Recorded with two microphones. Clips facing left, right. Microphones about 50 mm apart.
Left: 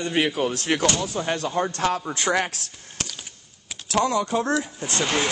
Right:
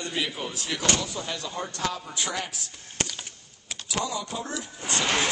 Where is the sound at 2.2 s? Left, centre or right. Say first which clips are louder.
Left 8 dB; left.